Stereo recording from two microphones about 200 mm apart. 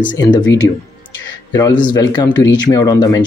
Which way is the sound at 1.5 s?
15° left (ahead or behind).